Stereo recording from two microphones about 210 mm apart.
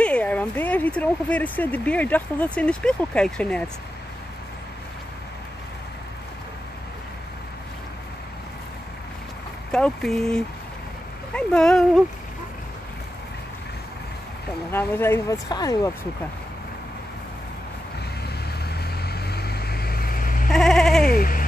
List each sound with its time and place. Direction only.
0.0 s speech: 5° left (ahead or behind)
9.7 s speech: 5° left (ahead or behind)
14.7 s speech: 10° left (ahead or behind)
18.7 s vehicle: 50° left (ahead or behind)
20.5 s bleat: 5° left (ahead or behind)
21.0 s bleat: 45° left (ahead or behind)